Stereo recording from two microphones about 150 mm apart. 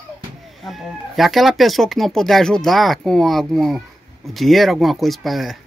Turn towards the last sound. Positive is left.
turn(degrees=0)  # may be behind; listen again after turning